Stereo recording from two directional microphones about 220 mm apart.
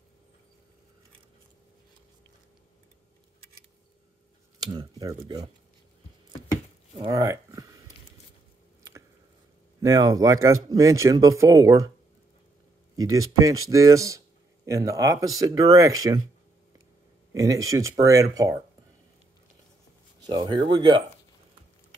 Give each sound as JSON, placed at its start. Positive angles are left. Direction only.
{"t": 4.6, "sound": "speech", "side_deg": -20}
{"t": 7.0, "sound": "a sound", "side_deg": -15}
{"t": 9.8, "sound": "speech", "side_deg": -15}
{"t": 12.9, "sound": "speech", "side_deg": -15}
{"t": 17.3, "sound": "speech", "side_deg": -15}
{"t": 20.2, "sound": "speech", "side_deg": -20}